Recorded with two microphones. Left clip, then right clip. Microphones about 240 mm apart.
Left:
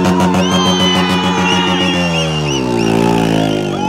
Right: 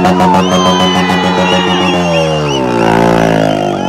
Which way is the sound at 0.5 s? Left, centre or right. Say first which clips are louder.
Right 4 dB; centre.